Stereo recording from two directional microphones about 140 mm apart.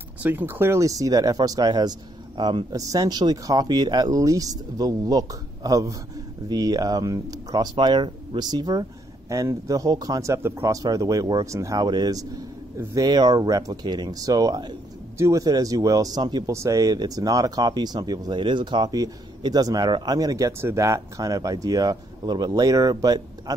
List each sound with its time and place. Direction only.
0.2 s speech: 15° right (ahead or behind)